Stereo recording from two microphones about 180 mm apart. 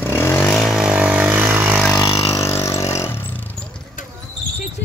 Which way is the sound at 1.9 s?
20° left (ahead or behind).